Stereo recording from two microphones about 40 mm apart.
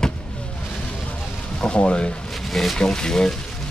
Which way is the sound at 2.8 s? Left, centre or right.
Centre.